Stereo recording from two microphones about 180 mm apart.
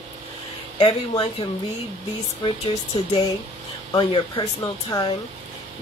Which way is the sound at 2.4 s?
25° left (ahead or behind).